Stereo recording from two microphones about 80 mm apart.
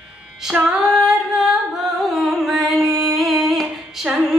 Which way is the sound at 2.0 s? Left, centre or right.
Centre.